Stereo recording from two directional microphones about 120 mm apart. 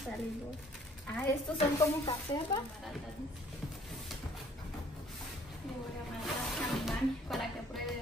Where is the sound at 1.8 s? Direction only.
35° left (ahead or behind).